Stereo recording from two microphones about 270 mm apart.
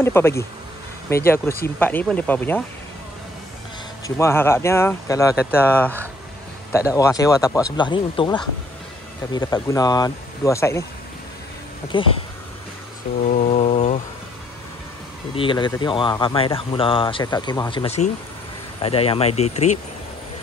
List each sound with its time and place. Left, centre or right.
0.0 s speech: centre
4.2 s speech: centre
9.3 s speech: centre
11.9 s speech: centre
13.2 s speech: left
15.3 s speech: centre